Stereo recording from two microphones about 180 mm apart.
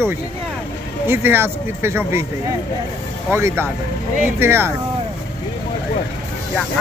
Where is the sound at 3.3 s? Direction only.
15° right (ahead or behind).